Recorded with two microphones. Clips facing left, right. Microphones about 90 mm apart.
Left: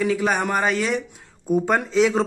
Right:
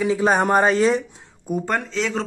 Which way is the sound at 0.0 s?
25° right (ahead or behind).